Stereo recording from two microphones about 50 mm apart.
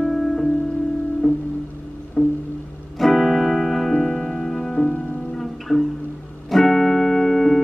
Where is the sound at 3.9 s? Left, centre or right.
Centre.